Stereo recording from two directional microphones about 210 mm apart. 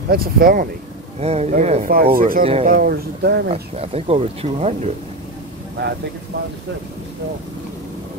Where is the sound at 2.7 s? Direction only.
45° right (ahead or behind).